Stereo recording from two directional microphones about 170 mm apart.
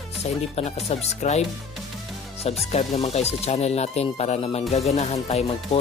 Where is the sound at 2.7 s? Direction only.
40° left (ahead or behind).